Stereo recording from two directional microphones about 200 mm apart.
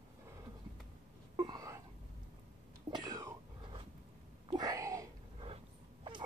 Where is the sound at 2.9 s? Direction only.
20° right (ahead or behind).